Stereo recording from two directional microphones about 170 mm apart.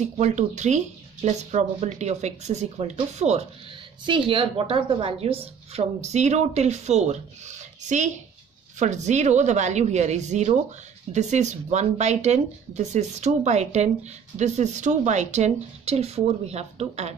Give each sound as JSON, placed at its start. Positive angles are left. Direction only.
{"t": 0.2, "sound": "a woman's voice", "side_deg": -45}